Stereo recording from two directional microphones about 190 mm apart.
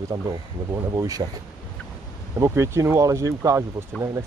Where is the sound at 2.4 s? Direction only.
15° right (ahead or behind).